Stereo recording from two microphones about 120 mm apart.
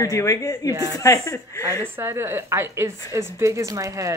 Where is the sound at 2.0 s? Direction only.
20° right (ahead or behind).